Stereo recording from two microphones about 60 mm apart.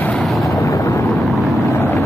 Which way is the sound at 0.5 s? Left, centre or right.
Left.